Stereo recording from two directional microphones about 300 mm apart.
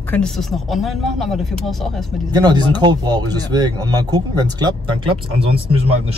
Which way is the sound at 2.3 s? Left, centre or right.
Centre.